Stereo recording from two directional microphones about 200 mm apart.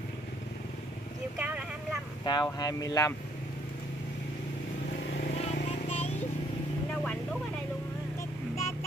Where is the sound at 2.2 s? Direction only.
20° left (ahead or behind).